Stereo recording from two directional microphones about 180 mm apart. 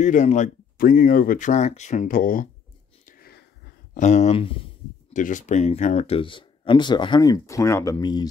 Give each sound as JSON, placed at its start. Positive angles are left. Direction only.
{"t": 0.0, "sound": "speech", "side_deg": 45}
{"t": 3.1, "sound": "a sound", "side_deg": 55}
{"t": 4.0, "sound": "speech", "side_deg": 40}
{"t": 5.1, "sound": "speech", "side_deg": 45}